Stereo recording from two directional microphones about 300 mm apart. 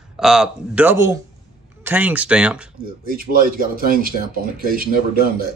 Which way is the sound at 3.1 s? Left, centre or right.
Right.